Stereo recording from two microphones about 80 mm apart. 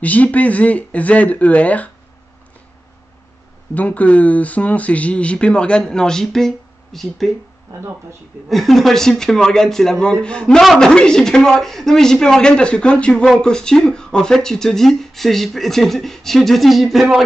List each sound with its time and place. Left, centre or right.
0.0 s speech: centre
3.7 s speech: centre
8.5 s speech: centre